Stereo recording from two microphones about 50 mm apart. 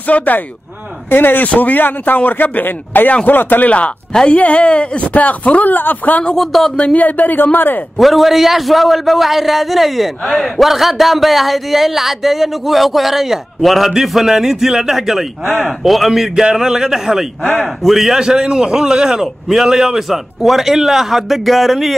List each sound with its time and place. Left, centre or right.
0.1 s speech: left
4.3 s speech: left
6.3 s a man's voice: centre
6.8 s speech: left
8.0 s a man's voice: centre